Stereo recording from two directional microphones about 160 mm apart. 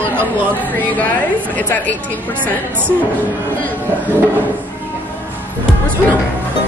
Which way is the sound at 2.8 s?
10° right (ahead or behind).